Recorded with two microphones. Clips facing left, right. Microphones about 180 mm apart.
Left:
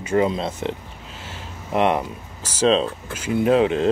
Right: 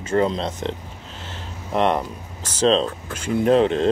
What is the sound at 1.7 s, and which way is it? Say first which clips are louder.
Speech: even; 10° left (ahead or behind).